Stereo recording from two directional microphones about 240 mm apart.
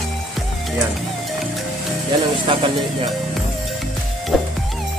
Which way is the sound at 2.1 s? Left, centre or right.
Centre.